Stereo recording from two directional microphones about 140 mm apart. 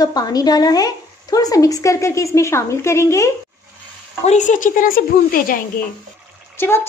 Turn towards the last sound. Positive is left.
turn(degrees=15)  # may be behind; listen again after turning